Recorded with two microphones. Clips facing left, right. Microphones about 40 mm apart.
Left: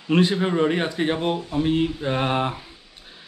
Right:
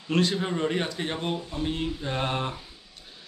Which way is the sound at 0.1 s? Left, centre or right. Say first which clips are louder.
Left 6 dB; left.